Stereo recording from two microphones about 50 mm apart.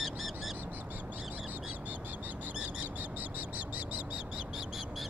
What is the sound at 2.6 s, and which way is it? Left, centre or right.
Bird, right.